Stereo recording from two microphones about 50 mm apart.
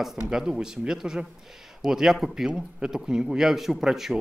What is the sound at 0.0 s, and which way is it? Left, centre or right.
Speech, centre.